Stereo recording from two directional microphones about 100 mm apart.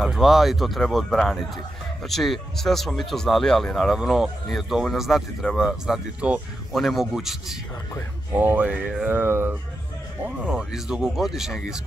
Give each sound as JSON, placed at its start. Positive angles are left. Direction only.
{"t": 0.0, "sound": "speech", "side_deg": -5}
{"t": 8.3, "sound": "speech", "side_deg": -20}
{"t": 10.2, "sound": "speech", "side_deg": -10}